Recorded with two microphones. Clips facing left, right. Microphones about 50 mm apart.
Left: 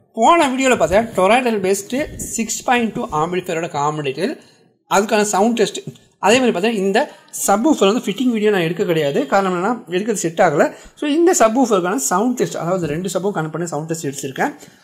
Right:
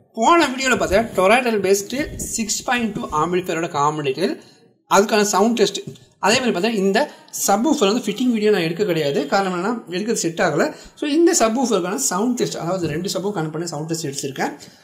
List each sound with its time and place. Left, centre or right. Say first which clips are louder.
0.1 s speech: left 2 dB; centre
1.1 s a woman's voice: left 1 dB; centre; by 14.5 s left